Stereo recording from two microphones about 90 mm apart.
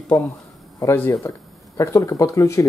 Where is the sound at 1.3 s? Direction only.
35° left (ahead or behind).